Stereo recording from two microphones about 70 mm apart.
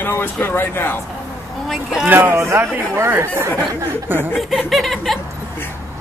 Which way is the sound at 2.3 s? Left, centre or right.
Right.